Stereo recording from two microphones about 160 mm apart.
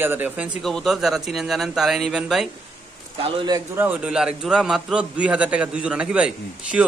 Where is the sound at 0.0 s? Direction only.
10° right (ahead or behind).